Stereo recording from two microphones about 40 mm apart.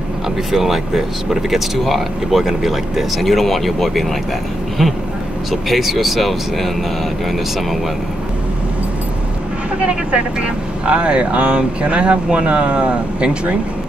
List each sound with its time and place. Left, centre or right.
0.5 s speech: centre
5.5 s speech: centre
9.8 s speech: right